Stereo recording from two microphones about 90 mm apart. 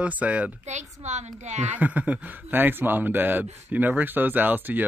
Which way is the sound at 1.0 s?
90° right.